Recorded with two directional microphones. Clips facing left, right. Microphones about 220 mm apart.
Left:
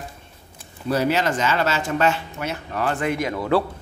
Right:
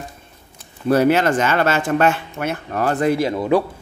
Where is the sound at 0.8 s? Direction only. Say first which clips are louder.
Right 6 dB; 55° right (ahead or behind); by 3.4 s 30° right (ahead or behind).